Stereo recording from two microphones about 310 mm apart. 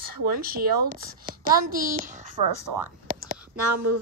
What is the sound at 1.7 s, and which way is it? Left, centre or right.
Speech, right.